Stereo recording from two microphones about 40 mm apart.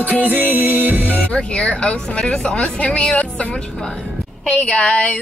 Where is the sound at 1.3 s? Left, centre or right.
Left.